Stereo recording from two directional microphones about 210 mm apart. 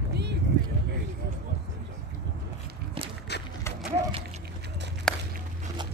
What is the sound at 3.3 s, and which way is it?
Livestock, 55° left (ahead or behind).